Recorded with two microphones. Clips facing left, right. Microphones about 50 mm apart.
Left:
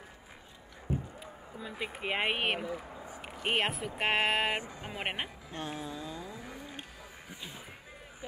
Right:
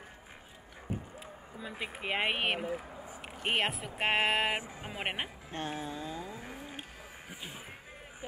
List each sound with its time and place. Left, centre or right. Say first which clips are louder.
1.6 s speech: left 1 dB; centre
5.5 s a sound: right 1 dB; right
7.2 s music: right 1 dB; right